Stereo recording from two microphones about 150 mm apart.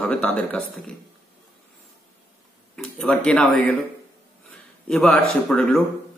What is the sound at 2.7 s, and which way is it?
Speech, 5° left (ahead or behind).